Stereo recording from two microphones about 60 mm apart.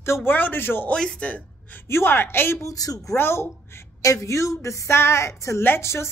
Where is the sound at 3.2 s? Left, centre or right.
Left.